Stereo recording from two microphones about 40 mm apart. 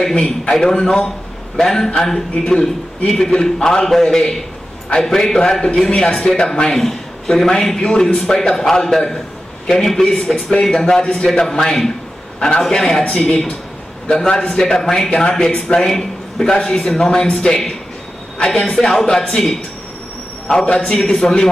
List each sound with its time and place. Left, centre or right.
0.1 s a man's voice: centre
14.5 s a man's voice: centre
15.9 s a man's voice: centre
21.0 s a man's voice: centre